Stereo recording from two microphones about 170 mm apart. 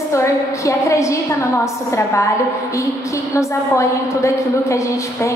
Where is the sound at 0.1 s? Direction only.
15° left (ahead or behind).